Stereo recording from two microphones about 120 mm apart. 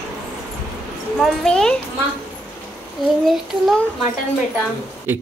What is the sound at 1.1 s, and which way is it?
Speech, 5° left (ahead or behind).